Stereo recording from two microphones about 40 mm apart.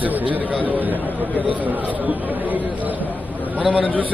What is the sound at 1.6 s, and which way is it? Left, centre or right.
Speech, right.